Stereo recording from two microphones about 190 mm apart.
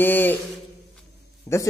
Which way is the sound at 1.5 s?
10° left (ahead or behind).